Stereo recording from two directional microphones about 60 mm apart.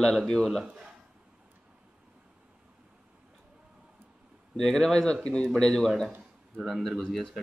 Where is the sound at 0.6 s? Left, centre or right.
Centre.